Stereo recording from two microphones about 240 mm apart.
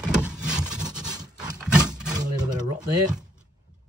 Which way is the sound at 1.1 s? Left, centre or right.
Centre.